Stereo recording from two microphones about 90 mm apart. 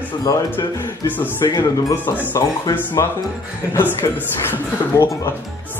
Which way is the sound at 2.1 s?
35° left (ahead or behind).